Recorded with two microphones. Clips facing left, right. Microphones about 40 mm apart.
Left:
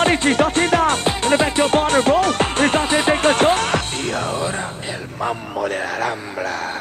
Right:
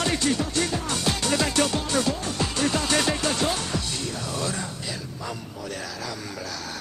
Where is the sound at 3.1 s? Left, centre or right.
Left.